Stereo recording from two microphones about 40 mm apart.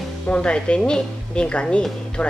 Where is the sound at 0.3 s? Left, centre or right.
Left.